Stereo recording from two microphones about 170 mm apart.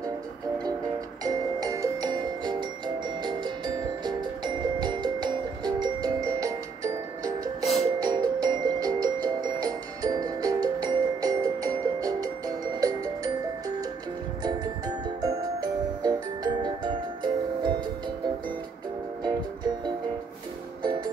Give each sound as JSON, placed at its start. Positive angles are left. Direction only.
{"t": 1.2, "sound": "music", "side_deg": -20}
{"t": 15.2, "sound": "music", "side_deg": -25}
{"t": 19.2, "sound": "music", "side_deg": -25}